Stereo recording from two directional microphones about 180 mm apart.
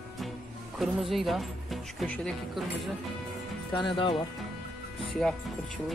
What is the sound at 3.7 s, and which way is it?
Speech, 25° left (ahead or behind).